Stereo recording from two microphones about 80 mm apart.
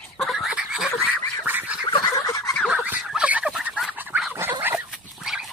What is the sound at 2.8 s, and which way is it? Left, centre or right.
Fowl, centre.